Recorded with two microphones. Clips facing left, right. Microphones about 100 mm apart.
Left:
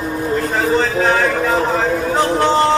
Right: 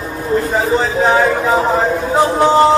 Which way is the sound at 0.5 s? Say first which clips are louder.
Right 1 dB; 5° right (ahead or behind).